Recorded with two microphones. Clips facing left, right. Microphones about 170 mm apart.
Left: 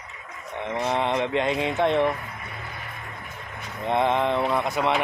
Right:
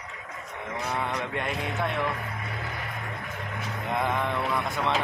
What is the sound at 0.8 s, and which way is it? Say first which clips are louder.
Speech: left 7 dB; 25° left (ahead or behind).